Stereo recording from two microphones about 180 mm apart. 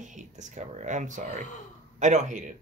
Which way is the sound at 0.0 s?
45° right (ahead or behind).